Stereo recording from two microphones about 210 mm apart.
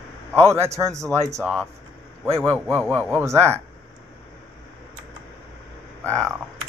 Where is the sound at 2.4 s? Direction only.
10° right (ahead or behind).